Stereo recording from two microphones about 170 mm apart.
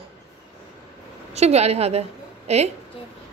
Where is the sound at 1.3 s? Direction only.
40° right (ahead or behind).